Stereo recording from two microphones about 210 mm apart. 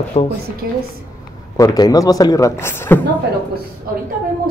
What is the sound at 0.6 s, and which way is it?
Speech, 45° right (ahead or behind).